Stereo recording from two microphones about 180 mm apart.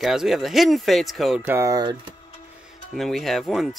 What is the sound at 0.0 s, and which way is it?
Speech, centre (ahead or behind).